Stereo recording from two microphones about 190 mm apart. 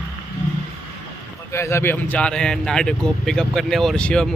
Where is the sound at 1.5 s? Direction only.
15° left (ahead or behind).